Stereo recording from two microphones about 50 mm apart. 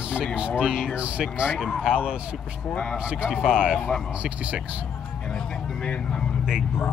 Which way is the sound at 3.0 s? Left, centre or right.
Centre.